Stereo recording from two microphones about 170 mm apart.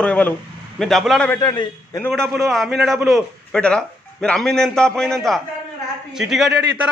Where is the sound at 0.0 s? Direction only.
10° left (ahead or behind).